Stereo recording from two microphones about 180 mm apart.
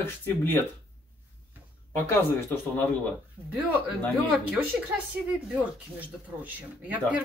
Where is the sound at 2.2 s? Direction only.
10° left (ahead or behind).